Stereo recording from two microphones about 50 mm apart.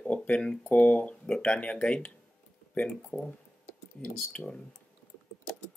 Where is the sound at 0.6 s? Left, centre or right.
Left.